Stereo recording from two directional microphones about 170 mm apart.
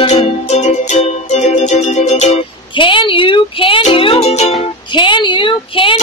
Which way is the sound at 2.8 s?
30° left (ahead or behind).